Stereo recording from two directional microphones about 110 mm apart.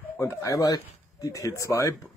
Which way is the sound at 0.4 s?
30° left (ahead or behind).